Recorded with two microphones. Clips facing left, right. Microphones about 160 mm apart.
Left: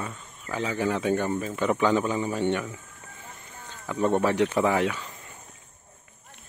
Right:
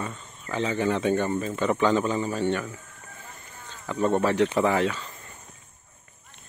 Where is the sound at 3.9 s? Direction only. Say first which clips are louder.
Even; 10° left (ahead or behind).